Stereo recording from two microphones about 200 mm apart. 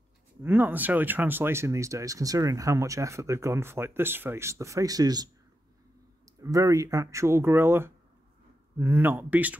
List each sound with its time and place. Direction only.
0.4 s speech: 10° right (ahead or behind)